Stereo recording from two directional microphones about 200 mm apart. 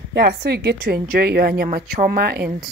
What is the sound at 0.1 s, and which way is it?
A woman's voice, 55° right (ahead or behind).